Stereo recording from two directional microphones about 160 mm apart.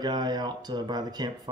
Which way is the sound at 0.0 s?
25° right (ahead or behind).